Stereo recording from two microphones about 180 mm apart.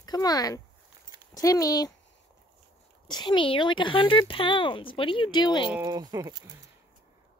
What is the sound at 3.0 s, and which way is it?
Speech, 25° left (ahead or behind).